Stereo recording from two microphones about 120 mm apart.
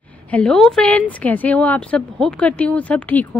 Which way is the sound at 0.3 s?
5° left (ahead or behind).